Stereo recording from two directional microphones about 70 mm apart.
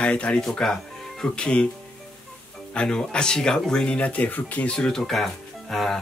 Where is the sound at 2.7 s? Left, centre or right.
Centre.